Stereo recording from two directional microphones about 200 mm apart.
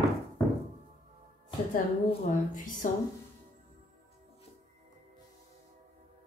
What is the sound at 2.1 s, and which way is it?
Speech, 40° left (ahead or behind).